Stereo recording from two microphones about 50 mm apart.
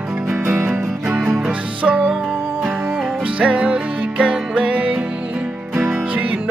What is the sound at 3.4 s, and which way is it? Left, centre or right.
Music, right.